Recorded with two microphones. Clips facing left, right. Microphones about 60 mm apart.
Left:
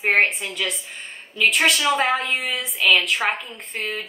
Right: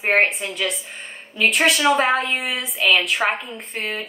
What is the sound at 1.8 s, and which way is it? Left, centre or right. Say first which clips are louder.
Speech: right 3 dB; centre.